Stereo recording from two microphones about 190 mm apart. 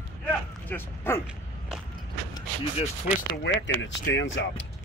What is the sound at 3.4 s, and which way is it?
Speech, 70° left (ahead or behind).